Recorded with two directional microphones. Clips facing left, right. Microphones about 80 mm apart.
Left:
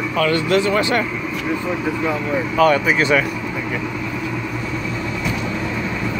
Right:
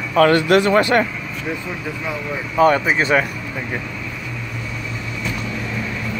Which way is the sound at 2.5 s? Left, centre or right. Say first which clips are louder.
Right 1 dB; right.